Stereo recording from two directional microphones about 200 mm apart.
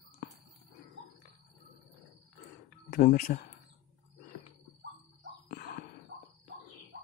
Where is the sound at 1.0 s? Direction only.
60° right (ahead or behind).